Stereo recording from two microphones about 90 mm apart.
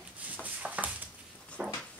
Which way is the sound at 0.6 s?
15° right (ahead or behind).